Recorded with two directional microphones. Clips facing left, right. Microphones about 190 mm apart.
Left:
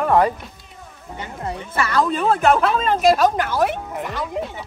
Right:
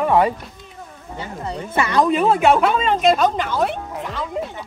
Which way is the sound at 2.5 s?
Centre (ahead or behind).